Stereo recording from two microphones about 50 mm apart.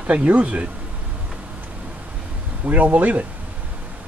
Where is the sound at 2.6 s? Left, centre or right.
Right.